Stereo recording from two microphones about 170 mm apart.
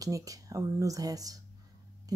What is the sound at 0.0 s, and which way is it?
Speech, 20° right (ahead or behind).